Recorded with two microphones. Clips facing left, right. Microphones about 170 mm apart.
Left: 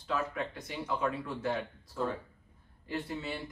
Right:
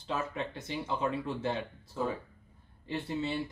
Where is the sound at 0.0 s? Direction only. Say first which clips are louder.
Left 1 dB; 25° right (ahead or behind).